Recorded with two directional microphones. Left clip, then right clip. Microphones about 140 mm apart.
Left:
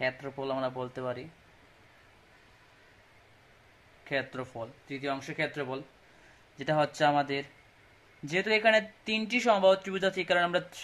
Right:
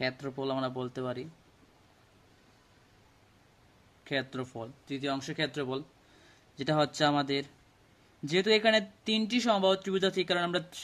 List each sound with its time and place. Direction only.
0.0 s speech: 45° right (ahead or behind)
4.0 s speech: 40° right (ahead or behind)